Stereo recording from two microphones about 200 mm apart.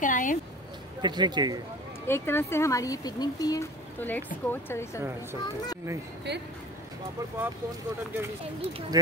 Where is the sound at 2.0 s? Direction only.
10° left (ahead or behind).